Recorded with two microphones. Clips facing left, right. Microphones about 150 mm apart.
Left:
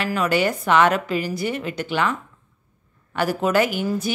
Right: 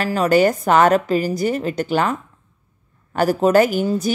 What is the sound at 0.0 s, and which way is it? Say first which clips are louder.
A woman's voice: right 5 dB; 40° right (ahead or behind).